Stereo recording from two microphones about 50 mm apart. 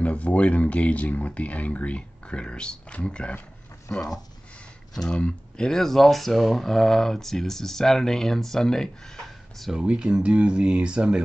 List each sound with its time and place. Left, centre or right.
0.0 s speech: left
5.1 s speech: centre
9.8 s speech: centre